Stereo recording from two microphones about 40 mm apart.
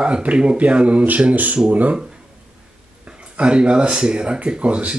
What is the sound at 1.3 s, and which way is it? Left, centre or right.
Speech, right.